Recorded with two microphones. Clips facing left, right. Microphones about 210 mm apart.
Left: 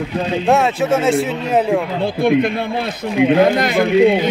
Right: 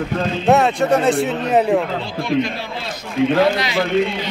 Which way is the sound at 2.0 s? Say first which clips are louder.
Left 5 dB; 55° left (ahead or behind).